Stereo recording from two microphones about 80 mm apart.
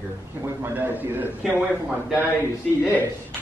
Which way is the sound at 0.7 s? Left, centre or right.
Right.